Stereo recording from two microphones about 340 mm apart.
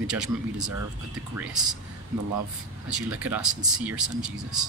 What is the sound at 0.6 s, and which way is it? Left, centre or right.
Speech, right.